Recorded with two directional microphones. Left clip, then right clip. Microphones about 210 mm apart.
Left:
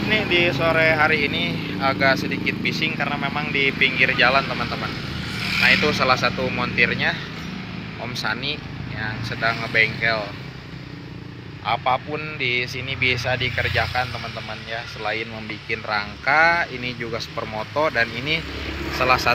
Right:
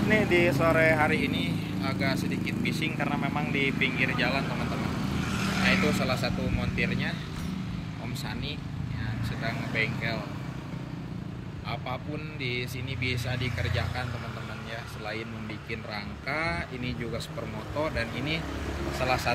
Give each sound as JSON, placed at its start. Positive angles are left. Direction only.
{"t": 0.1, "sound": "speech", "side_deg": -15}
{"t": 5.7, "sound": "speech", "side_deg": -10}
{"t": 8.2, "sound": "speech", "side_deg": -10}
{"t": 11.6, "sound": "speech", "side_deg": -5}